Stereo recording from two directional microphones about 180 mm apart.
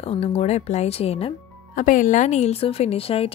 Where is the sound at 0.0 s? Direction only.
35° left (ahead or behind).